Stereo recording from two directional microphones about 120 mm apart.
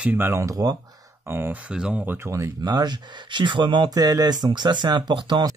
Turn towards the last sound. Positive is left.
turn(degrees=-40)  # may be behind; listen again after turning